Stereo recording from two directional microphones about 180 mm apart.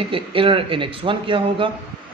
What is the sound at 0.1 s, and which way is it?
Speech, 30° right (ahead or behind).